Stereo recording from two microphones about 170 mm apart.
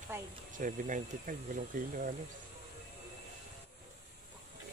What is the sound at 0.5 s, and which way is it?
Speech, 50° right (ahead or behind).